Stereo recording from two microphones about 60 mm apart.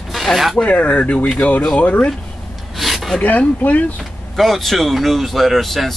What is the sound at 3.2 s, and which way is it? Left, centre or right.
Speech, left.